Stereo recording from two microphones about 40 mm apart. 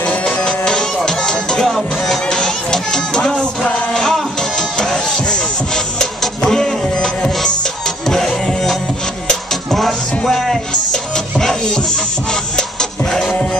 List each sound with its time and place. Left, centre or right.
0.0 s music: left
0.5 s music: centre
6.4 s music: centre
9.5 s music: centre; by 13.1 s left
13.1 s music: centre